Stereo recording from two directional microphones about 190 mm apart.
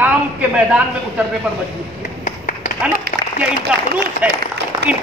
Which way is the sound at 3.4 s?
5° right (ahead or behind).